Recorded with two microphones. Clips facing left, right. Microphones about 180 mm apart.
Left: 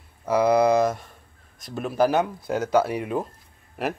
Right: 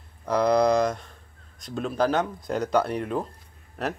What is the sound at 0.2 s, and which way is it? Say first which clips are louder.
Speech: left 2 dB; 5° left (ahead or behind).